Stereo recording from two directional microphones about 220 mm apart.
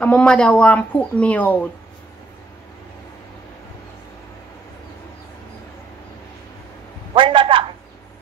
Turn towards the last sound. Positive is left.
turn(degrees=-25)  # may be behind; listen again after turning